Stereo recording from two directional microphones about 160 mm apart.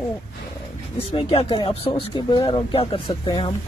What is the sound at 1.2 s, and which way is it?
Speech, 35° left (ahead or behind).